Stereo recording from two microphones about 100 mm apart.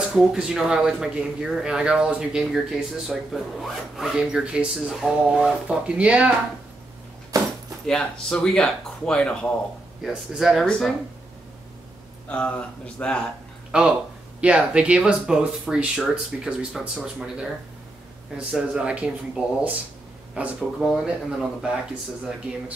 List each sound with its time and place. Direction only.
0.0 s speech: 5° right (ahead or behind)
7.3 s a sound: 35° right (ahead or behind)
7.8 s speech: 10° left (ahead or behind)
10.0 s speech: centre (ahead or behind)
12.3 s speech: 15° left (ahead or behind)
13.7 s speech: 10° right (ahead or behind)
18.5 s speech: 10° right (ahead or behind)
20.9 s speech: 5° right (ahead or behind)